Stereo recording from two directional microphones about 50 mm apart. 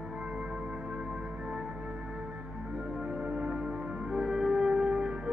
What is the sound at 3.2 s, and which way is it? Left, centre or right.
Music, centre.